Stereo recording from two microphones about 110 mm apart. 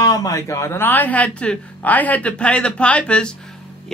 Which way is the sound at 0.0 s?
30° left (ahead or behind).